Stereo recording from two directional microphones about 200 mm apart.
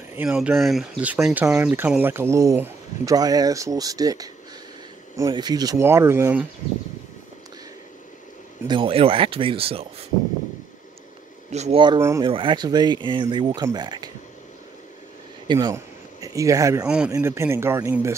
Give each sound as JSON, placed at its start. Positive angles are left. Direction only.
{"t": 0.1, "sound": "speech", "side_deg": -5}
{"t": 8.6, "sound": "speech", "side_deg": -25}
{"t": 11.5, "sound": "speech", "side_deg": -30}
{"t": 15.4, "sound": "a sound", "side_deg": -20}
{"t": 16.8, "sound": "speech", "side_deg": -5}